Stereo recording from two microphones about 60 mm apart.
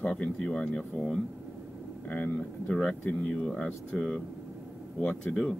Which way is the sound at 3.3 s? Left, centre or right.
Centre.